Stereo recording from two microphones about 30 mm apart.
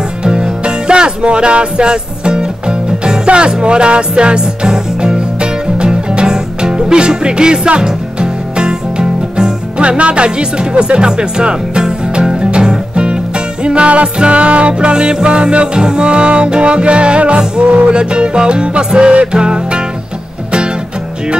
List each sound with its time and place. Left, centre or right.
0.2 s music: right